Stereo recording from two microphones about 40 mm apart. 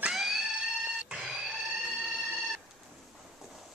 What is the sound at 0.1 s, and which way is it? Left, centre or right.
Music, centre.